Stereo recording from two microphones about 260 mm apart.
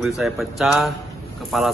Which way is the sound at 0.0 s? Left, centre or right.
Centre.